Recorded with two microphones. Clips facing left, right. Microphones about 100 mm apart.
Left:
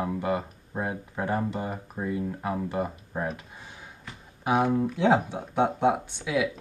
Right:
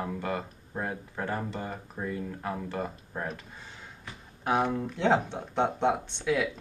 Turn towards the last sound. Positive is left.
turn(degrees=10)  # may be behind; listen again after turning